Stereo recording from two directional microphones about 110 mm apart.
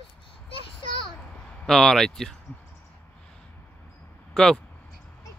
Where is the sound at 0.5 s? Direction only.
50° left (ahead or behind).